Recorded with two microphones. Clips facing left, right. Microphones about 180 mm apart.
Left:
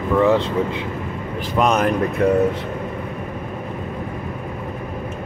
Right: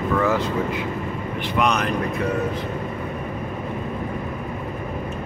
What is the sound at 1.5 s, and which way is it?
Speech, 45° left (ahead or behind).